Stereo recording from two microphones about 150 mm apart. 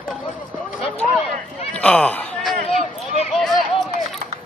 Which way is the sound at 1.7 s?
10° left (ahead or behind).